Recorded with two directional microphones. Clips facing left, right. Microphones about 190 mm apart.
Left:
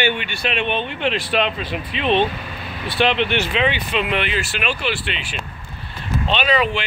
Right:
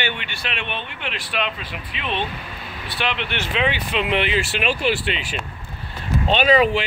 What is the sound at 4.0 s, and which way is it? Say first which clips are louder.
Speech: right 3 dB; 25° right (ahead or behind).